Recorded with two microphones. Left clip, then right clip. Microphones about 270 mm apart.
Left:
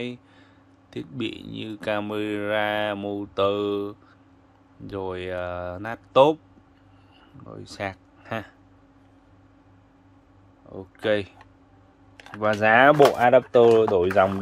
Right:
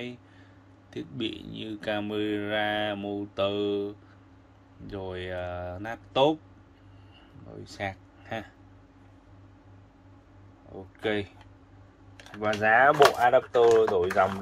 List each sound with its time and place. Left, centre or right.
0.8 s speech: centre
7.6 s speech: centre
11.0 s speech: left
12.5 s speech: left